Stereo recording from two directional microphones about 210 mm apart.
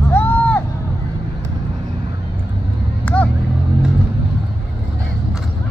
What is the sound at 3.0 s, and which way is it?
Vehicle, 5° left (ahead or behind).